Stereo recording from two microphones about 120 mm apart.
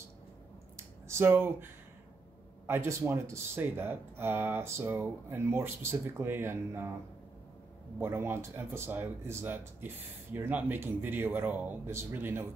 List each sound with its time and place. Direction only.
0.7 s a sound: 20° right (ahead or behind)
2.6 s speech: 20° right (ahead or behind)
8.0 s speech: 20° right (ahead or behind)